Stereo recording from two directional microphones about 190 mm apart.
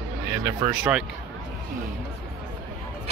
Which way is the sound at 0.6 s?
10° right (ahead or behind).